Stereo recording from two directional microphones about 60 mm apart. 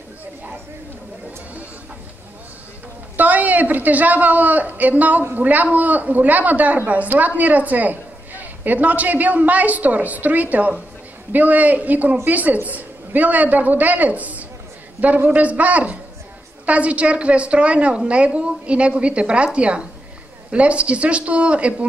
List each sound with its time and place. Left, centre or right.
3.2 s a man's voice: right